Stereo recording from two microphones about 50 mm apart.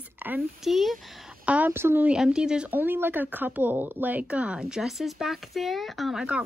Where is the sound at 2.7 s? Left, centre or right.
Right.